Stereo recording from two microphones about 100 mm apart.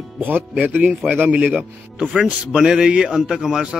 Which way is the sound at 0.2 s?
20° right (ahead or behind).